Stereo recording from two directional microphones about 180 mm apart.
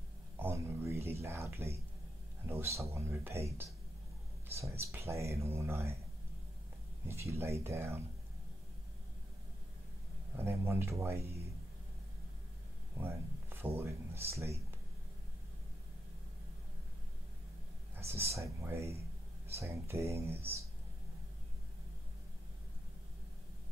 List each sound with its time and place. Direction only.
0.4 s a sound: 10° right (ahead or behind)
2.4 s speech: 15° right (ahead or behind)
7.1 s speech: 15° right (ahead or behind)
10.3 s speech: 15° right (ahead or behind)
12.9 s speech: 10° right (ahead or behind)
17.9 s speech: 15° right (ahead or behind)